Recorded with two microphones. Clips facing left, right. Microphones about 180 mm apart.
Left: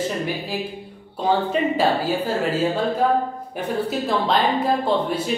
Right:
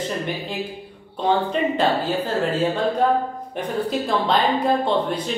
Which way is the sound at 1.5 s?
10° left (ahead or behind).